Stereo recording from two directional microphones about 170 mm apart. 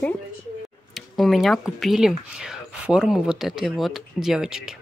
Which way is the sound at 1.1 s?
Centre (ahead or behind).